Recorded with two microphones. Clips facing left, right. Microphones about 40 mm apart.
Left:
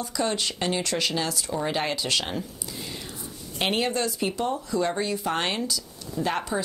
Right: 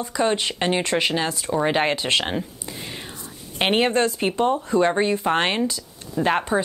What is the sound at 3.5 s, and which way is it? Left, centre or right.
Speech, right.